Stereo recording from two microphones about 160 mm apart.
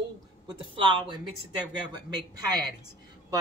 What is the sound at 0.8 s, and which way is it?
Speech, 30° right (ahead or behind).